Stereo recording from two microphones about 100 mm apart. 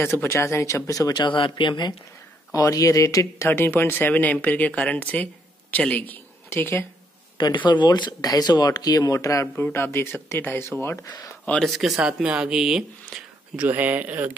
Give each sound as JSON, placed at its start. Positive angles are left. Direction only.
{"t": 0.0, "sound": "speech", "side_deg": 25}
{"t": 1.2, "sound": "speech", "side_deg": 55}
{"t": 2.5, "sound": "speech", "side_deg": 35}
{"t": 7.3, "sound": "speech", "side_deg": 50}
{"t": 9.6, "sound": "speech", "side_deg": 20}
{"t": 12.0, "sound": "speech", "side_deg": -10}
{"t": 13.6, "sound": "speech", "side_deg": -15}